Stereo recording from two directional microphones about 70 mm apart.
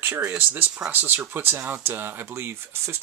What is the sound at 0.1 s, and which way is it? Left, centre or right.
Speech, centre.